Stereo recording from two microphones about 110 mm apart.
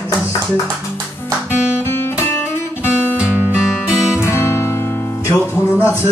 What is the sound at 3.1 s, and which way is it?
Music, 10° right (ahead or behind).